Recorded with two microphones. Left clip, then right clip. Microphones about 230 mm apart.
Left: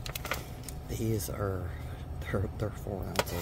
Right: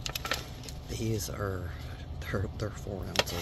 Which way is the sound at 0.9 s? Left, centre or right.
Centre.